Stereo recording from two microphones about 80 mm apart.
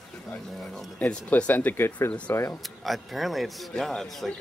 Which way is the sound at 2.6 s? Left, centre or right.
Centre.